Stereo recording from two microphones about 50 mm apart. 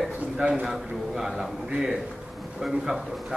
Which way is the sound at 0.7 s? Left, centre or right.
Centre.